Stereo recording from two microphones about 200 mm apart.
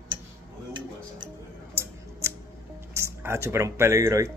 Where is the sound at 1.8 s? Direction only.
10° right (ahead or behind).